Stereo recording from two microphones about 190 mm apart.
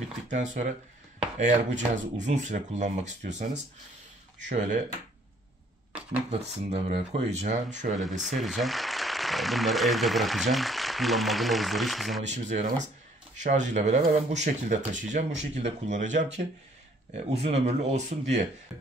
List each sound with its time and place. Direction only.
0.3 s speech: 40° right (ahead or behind)
6.4 s speech: 35° right (ahead or behind)
8.2 s speech: centre (ahead or behind)
12.2 s speech: 40° right (ahead or behind)